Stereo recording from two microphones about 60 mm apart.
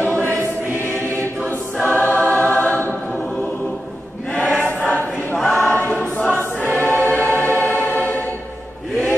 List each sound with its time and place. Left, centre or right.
1.9 s choir: left
4.6 s choir: left